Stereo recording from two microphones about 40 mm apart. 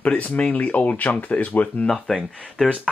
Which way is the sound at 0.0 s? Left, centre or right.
Left.